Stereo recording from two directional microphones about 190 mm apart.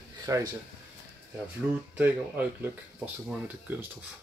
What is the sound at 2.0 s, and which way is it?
Speech, 10° right (ahead or behind).